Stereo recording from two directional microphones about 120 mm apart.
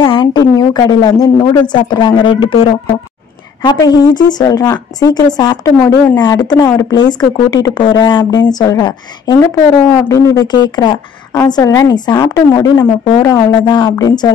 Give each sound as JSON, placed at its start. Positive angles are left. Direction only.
{"t": 0.0, "sound": "speech", "side_deg": 40}
{"t": 3.6, "sound": "speech", "side_deg": 35}
{"t": 13.7, "sound": "speech", "side_deg": 40}